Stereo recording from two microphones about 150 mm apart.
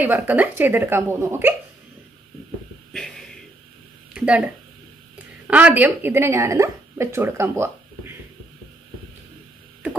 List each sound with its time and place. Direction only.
0.0 s speech: 10° right (ahead or behind)
4.1 s speech: 5° right (ahead or behind)
5.5 s speech: 10° right (ahead or behind)